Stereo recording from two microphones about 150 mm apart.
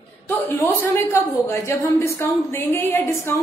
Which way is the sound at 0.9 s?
15° left (ahead or behind).